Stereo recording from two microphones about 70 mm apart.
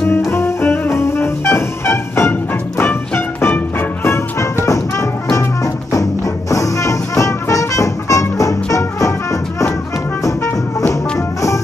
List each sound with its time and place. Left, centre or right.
0.2 s music: left
4.0 s music: left
6.5 s music: left
10.2 s music: left